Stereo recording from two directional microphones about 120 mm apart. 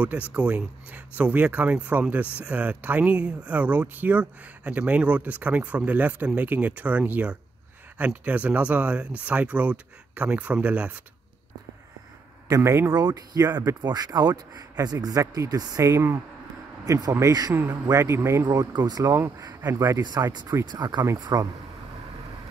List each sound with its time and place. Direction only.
0.3 s speech: 10° right (ahead or behind)
12.4 s speech: 30° right (ahead or behind)